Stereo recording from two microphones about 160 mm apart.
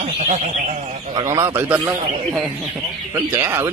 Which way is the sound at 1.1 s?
20° right (ahead or behind).